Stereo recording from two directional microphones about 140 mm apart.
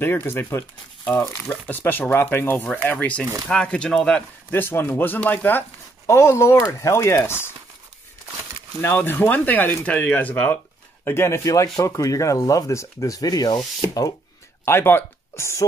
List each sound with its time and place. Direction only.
0.0 s speech: 15° left (ahead or behind)
8.8 s speech: 15° left (ahead or behind)
11.1 s rub: 20° left (ahead or behind)
14.6 s speech: 15° left (ahead or behind)